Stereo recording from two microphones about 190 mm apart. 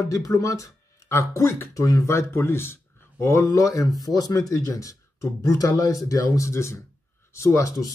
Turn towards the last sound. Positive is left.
turn(degrees=15)  # may be behind; listen again after turning